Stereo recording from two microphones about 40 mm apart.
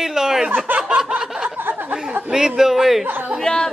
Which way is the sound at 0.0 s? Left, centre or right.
Centre.